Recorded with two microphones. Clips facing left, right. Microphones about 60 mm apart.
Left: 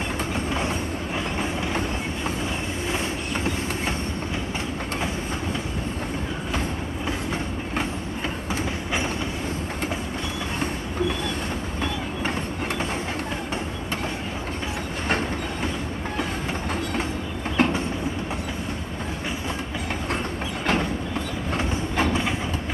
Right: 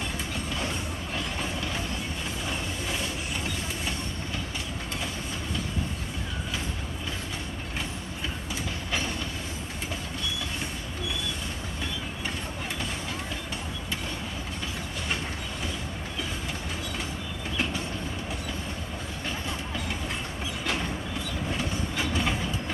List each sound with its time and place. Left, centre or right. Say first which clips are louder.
17.6 s train: left 10 dB; left
21.5 s train: left 9 dB; left